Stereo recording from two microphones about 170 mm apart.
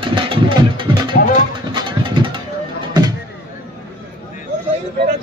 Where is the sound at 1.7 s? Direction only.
30° right (ahead or behind).